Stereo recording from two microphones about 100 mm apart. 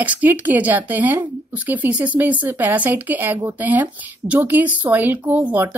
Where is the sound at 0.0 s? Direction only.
15° right (ahead or behind).